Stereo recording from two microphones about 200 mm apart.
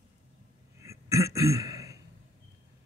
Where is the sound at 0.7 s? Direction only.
15° right (ahead or behind).